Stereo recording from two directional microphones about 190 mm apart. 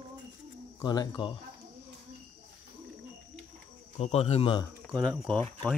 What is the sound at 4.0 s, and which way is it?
Speech, 35° left (ahead or behind).